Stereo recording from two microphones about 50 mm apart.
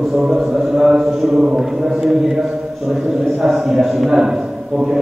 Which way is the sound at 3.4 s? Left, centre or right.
Centre.